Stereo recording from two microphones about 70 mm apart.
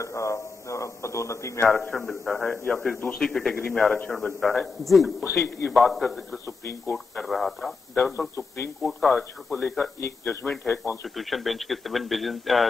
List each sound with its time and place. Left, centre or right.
0.0 s a man's voice: left
1.8 s a man's voice: centre
5.2 s a man's voice: left
5.7 s speech: centre
10.2 s a man's voice: left
11.1 s speech: centre